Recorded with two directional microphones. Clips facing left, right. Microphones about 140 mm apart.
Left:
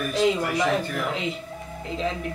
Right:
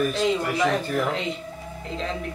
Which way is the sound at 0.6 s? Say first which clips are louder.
Right 3 dB; centre (ahead or behind).